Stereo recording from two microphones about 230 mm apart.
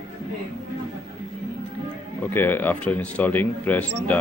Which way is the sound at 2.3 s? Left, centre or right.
Centre.